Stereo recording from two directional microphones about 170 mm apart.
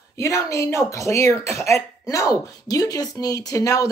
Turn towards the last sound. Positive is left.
turn(degrees=20)  # may be behind; listen again after turning